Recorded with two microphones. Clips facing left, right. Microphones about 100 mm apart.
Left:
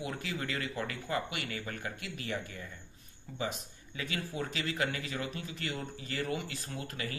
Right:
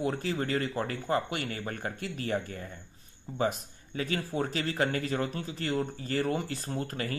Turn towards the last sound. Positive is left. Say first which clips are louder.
# right 6 dB
turn(degrees=-40)  # may be behind; listen again after turning